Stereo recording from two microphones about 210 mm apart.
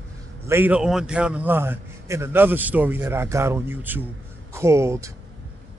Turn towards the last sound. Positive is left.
turn(degrees=-15)  # may be behind; listen again after turning